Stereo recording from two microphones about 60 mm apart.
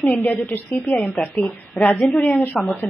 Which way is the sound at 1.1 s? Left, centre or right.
Centre.